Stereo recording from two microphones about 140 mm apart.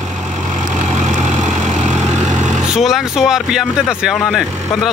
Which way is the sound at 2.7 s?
5° right (ahead or behind).